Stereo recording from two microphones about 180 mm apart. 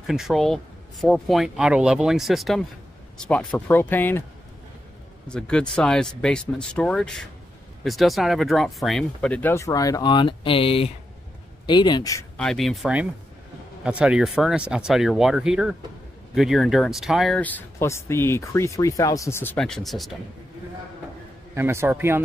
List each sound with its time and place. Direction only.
0.0 s speech: centre (ahead or behind)
5.3 s speech: 5° left (ahead or behind)
12.4 s speech: 5° left (ahead or behind)
21.5 s a man's voice: 15° right (ahead or behind)